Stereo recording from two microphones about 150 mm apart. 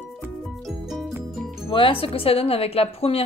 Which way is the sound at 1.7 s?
35° left (ahead or behind).